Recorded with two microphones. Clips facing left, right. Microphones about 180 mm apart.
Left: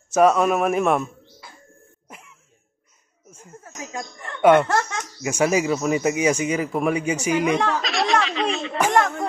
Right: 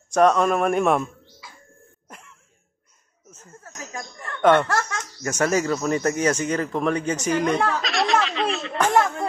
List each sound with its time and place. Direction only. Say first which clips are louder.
0.1 s a man's voice: left 1 dB; 5° left (ahead or behind)
2.0 s cough: left 1 dB; 5° left (ahead or behind)
3.3 s a sound: left 2 dB; 10° left (ahead or behind)
4.4 s speech: left 2 dB; 10° left (ahead or behind)
4.6 s speech: left 3 dB; 20° left (ahead or behind)
5.2 s speech: left 2 dB; 10° left (ahead or behind)
7.5 s a sound: left 1 dB; centre (ahead or behind)